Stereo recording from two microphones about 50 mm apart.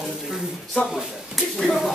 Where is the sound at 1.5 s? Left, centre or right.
Centre.